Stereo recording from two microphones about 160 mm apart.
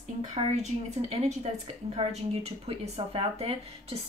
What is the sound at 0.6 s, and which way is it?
A woman's voice, 40° right (ahead or behind).